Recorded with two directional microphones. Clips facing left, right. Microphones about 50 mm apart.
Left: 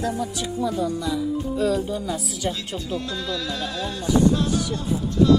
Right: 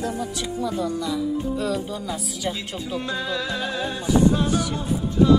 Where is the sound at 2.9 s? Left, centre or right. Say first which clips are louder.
Right 2 dB; centre.